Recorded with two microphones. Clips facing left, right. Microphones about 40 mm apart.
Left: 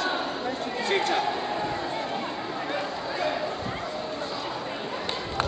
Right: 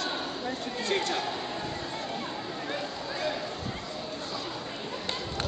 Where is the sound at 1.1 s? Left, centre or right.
Centre.